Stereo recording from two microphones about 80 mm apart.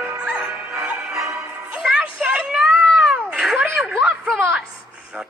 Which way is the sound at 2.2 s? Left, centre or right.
Centre.